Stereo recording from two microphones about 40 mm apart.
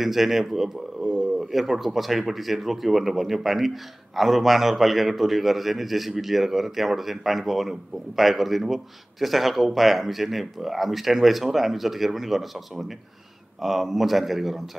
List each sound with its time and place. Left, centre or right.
0.0 s speech: centre
1.0 s a sound: centre
1.5 s speech: centre